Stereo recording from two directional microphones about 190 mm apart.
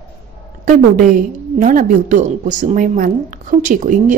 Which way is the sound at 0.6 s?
40° right (ahead or behind).